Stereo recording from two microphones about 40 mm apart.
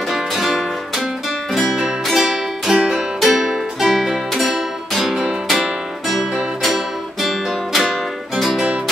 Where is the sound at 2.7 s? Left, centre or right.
Right.